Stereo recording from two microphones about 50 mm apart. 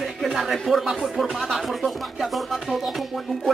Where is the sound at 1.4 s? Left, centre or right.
Centre.